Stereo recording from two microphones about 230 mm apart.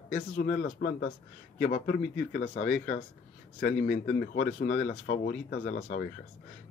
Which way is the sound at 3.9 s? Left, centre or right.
Left.